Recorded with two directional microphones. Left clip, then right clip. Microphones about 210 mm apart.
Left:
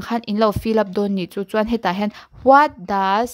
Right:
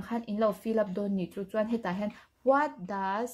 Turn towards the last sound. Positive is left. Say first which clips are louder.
# left 14 dB
turn(degrees=40)  # may be behind; listen again after turning